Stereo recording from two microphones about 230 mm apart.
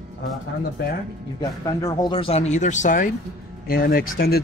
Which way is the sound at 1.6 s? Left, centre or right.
Centre.